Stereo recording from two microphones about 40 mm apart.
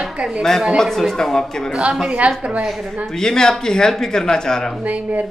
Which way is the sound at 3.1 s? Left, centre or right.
Centre.